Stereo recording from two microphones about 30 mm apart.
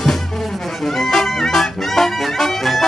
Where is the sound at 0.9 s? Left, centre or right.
Centre.